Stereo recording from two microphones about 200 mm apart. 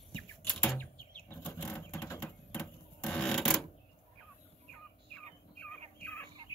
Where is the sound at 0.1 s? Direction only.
5° left (ahead or behind).